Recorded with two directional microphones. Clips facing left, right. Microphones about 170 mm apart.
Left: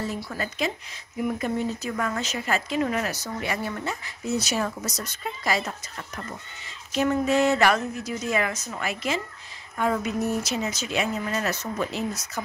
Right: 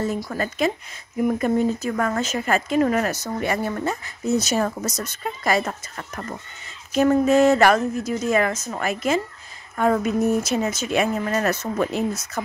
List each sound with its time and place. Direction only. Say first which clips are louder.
0.0 s speech: right 6 dB; 50° right (ahead or behind)